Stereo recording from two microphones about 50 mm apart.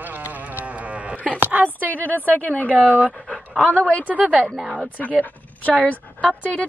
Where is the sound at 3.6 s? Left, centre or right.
Left.